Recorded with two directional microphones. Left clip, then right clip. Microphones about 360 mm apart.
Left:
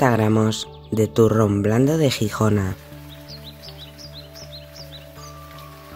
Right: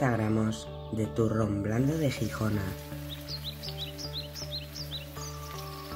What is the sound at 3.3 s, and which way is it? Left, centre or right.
Music, centre.